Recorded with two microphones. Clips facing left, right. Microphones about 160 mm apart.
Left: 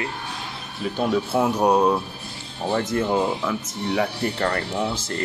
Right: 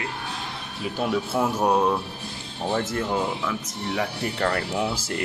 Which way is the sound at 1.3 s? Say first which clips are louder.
Left 3 dB; 20° left (ahead or behind).